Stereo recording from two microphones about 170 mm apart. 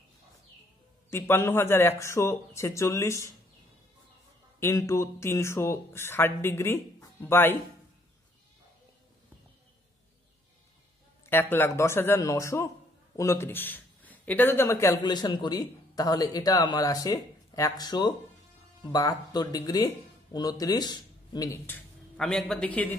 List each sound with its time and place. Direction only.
1.1 s speech: 15° left (ahead or behind)
4.6 s speech: 15° left (ahead or behind)
11.2 s speech: 15° left (ahead or behind)